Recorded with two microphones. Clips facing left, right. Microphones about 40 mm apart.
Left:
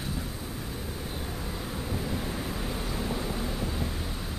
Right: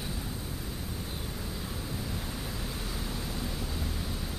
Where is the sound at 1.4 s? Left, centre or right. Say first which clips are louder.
Left 3 dB; left.